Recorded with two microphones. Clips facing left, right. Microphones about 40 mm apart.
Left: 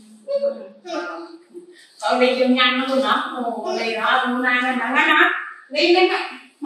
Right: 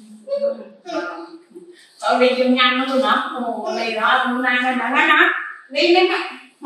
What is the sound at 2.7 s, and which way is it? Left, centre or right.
A woman's voice, centre.